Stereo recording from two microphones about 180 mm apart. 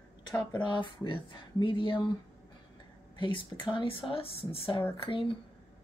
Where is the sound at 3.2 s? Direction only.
25° left (ahead or behind).